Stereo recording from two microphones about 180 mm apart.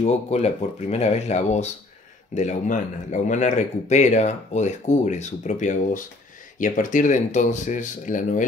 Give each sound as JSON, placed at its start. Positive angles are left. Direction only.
{"t": 0.0, "sound": "speech", "side_deg": 35}